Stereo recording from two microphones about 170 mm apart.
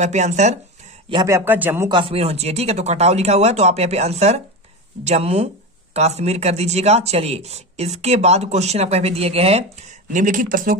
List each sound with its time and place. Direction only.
0.0 s speech: 40° right (ahead or behind)
1.1 s a man's voice: 20° right (ahead or behind)
1.9 s speech: 30° right (ahead or behind)
10.1 s speech: 50° right (ahead or behind)